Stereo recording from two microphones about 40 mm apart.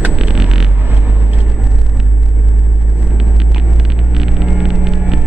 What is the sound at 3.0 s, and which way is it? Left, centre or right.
Vehicle, centre.